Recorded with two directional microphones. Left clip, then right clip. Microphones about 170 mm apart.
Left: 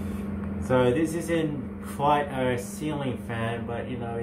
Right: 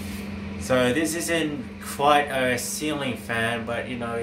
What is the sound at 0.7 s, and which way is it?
Speech, 40° right (ahead or behind).